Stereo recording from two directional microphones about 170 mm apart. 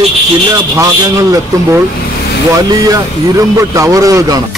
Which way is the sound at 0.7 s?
20° right (ahead or behind).